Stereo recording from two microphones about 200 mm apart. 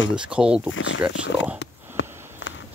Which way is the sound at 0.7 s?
70° left (ahead or behind).